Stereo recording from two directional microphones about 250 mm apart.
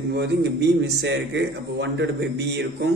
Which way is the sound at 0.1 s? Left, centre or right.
Right.